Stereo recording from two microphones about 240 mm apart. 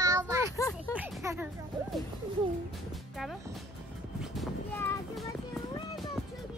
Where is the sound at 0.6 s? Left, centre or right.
Centre.